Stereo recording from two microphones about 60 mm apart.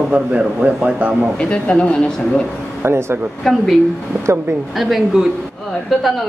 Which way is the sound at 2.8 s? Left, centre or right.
Right.